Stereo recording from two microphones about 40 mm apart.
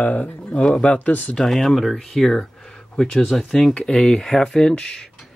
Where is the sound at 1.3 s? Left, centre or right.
Centre.